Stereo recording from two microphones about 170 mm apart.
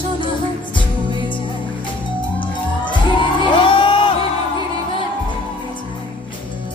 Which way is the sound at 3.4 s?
30° left (ahead or behind).